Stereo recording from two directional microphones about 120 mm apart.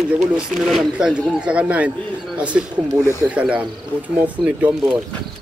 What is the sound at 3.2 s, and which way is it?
Speech, 20° right (ahead or behind).